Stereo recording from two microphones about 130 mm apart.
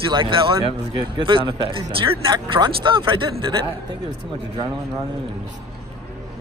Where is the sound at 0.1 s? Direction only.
40° right (ahead or behind).